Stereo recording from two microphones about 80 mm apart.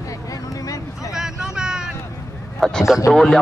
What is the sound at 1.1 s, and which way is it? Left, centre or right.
Vehicle, centre.